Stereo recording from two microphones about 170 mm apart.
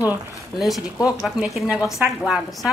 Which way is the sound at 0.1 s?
Centre (ahead or behind).